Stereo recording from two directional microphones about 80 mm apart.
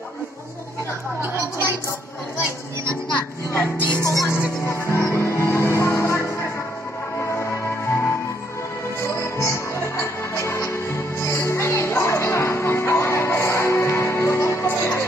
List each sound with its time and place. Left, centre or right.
1.2 s a sound: right
4.0 s music: left
4.3 s music: left